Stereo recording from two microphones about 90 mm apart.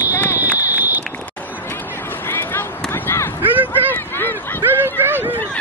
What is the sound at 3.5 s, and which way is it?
Vehicle, 20° right (ahead or behind).